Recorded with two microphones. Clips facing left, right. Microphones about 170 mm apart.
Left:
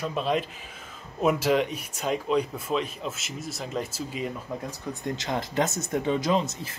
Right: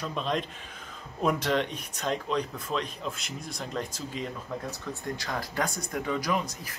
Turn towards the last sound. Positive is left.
turn(degrees=25)  # may be behind; listen again after turning